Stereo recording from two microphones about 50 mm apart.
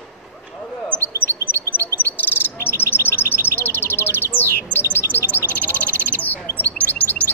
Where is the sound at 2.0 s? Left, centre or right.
Left.